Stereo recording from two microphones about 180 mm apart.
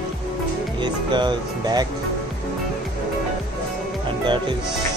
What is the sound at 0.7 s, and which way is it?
Speech, 25° right (ahead or behind).